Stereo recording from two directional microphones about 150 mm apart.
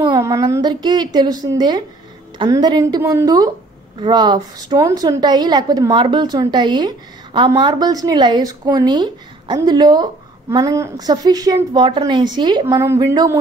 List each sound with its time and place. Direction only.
0.0 s a woman's voice: 25° right (ahead or behind)